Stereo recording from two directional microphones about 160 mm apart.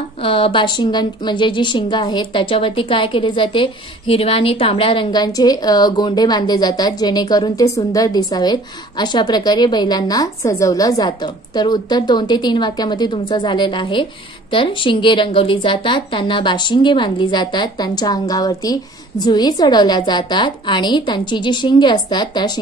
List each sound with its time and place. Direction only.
0.2 s a woman's voice: 35° left (ahead or behind)